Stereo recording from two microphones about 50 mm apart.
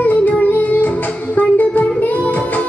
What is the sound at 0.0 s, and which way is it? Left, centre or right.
Music, left.